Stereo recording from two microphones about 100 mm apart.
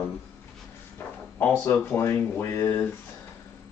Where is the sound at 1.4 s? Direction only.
20° left (ahead or behind).